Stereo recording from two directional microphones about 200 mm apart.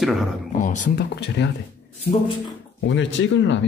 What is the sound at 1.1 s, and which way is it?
Speech, 60° left (ahead or behind).